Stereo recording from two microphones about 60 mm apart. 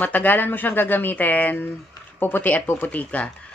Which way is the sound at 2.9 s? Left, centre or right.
Left.